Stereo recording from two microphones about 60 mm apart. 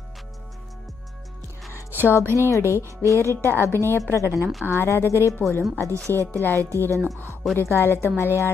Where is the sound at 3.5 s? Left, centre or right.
Right.